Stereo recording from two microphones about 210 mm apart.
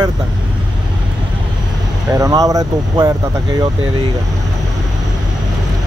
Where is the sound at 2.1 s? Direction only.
15° right (ahead or behind).